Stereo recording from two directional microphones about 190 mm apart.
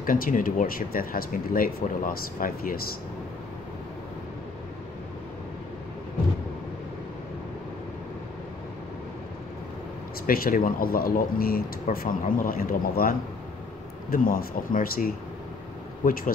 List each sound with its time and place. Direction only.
0.0 s speech: 45° left (ahead or behind)
10.2 s speech: 50° left (ahead or behind)
14.1 s speech: 50° left (ahead or behind)